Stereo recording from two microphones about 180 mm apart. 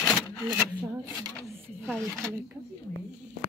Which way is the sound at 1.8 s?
5° left (ahead or behind).